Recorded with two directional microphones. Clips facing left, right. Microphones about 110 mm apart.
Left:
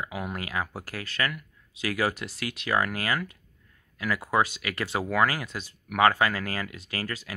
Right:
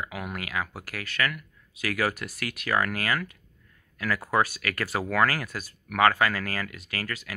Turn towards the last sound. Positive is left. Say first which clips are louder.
# left 1 dB
turn(degrees=25)  # may be behind; listen again after turning